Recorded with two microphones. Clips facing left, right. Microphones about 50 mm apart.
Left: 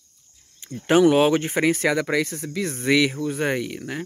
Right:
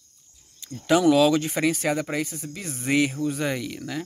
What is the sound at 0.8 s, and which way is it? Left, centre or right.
Speech, left.